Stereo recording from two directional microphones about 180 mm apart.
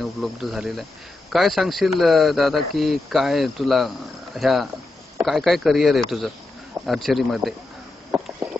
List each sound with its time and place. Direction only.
0.0 s speech: centre (ahead or behind)